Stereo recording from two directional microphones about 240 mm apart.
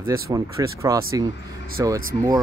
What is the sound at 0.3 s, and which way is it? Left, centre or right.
Speech, centre.